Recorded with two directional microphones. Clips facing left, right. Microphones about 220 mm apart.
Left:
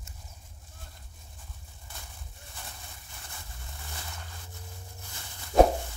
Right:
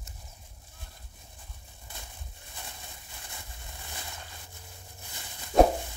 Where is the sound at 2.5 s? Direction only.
20° right (ahead or behind).